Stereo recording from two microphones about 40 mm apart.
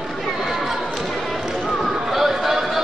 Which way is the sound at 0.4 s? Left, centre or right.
Centre.